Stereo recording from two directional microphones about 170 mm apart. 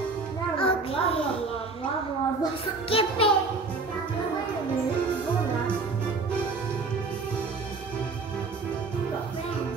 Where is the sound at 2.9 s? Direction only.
35° left (ahead or behind).